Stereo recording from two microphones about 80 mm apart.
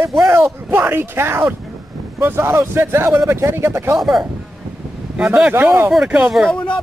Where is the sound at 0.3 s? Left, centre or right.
Right.